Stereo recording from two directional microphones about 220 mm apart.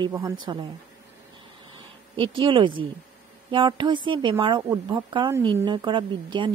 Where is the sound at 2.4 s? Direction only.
20° right (ahead or behind).